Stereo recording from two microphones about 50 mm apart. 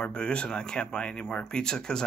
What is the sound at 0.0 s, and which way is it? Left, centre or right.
Speech, centre.